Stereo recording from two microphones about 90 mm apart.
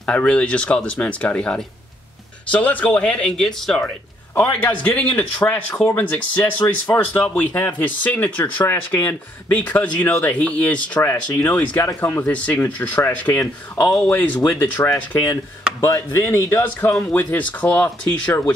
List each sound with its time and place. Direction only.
0.0 s speech: 10° left (ahead or behind)
4.4 s speech: 20° left (ahead or behind)
11.8 s speech: 30° left (ahead or behind)
12.3 s speech: 15° left (ahead or behind)
17.1 s speech: 20° left (ahead or behind)